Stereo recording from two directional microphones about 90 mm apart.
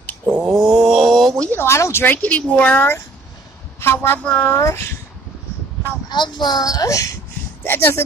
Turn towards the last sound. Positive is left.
turn(degrees=25)  # may be behind; listen again after turning